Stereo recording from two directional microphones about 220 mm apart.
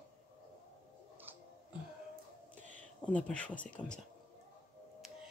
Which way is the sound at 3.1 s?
5° left (ahead or behind).